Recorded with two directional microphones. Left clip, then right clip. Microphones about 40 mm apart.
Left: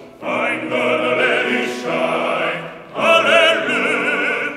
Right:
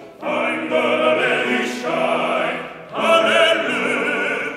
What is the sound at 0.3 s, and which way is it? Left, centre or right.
Opera, left.